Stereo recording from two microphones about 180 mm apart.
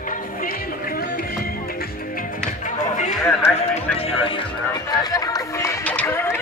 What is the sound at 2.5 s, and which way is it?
Music, 45° left (ahead or behind).